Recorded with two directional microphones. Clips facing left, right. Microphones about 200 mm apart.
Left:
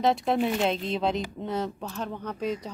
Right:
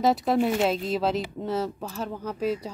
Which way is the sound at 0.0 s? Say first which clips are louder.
Right 2 dB; 5° right (ahead or behind).